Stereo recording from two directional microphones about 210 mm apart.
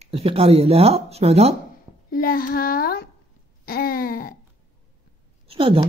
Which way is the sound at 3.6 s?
45° left (ahead or behind).